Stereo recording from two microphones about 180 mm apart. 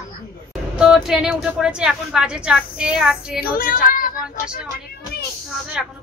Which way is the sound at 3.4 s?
55° left (ahead or behind).